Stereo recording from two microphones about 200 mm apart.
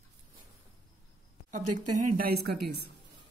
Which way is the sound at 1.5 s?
40° right (ahead or behind).